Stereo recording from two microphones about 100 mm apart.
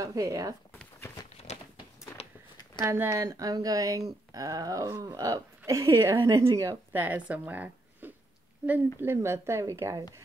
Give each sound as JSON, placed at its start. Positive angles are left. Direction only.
{"t": 0.0, "sound": "speech", "side_deg": -35}
{"t": 1.5, "sound": "a sound", "side_deg": 90}
{"t": 2.8, "sound": "speech", "side_deg": -25}
{"t": 6.9, "sound": "a woman's voice", "side_deg": -15}